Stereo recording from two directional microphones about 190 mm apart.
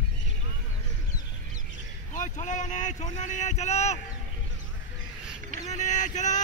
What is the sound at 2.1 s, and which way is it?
Speech, 40° left (ahead or behind).